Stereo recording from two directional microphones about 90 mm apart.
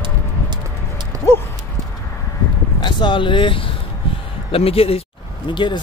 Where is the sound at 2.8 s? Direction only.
60° left (ahead or behind).